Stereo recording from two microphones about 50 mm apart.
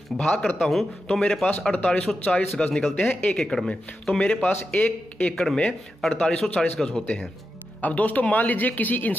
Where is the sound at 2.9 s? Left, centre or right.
Left.